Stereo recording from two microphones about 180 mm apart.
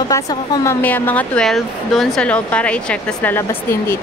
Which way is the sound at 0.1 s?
15° left (ahead or behind).